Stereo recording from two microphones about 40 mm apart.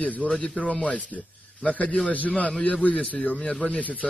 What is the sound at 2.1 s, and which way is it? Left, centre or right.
A man's voice, left.